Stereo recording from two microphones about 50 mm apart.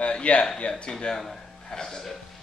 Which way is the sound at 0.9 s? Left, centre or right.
Centre.